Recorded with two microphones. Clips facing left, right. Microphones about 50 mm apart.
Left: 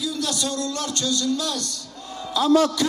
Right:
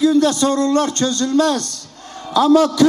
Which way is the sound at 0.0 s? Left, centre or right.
Right.